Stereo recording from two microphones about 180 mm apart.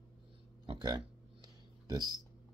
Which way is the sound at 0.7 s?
20° right (ahead or behind).